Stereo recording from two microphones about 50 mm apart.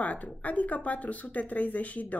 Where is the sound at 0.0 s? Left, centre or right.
Left.